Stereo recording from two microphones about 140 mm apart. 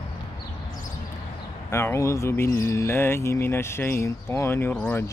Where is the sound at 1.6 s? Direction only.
20° left (ahead or behind).